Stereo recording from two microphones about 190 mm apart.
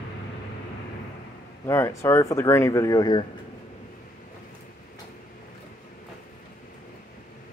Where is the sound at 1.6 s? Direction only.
15° left (ahead or behind).